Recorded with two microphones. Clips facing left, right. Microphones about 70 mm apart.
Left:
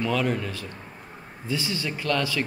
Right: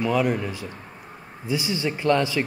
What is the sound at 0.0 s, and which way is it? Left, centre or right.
A man's voice, centre.